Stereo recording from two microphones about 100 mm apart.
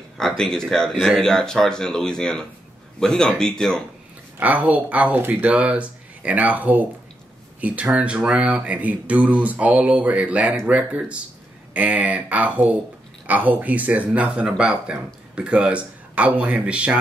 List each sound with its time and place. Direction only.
0.2 s speech: 5° left (ahead or behind)
4.4 s speech: 15° right (ahead or behind)